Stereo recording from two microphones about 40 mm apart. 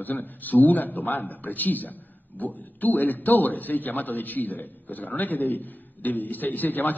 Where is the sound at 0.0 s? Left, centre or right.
Left.